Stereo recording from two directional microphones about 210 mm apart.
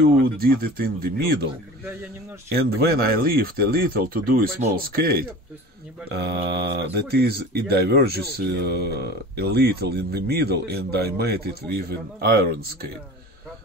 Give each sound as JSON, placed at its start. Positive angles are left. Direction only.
{"t": 0.2, "sound": "speech", "side_deg": -45}
{"t": 2.5, "sound": "speech", "side_deg": -50}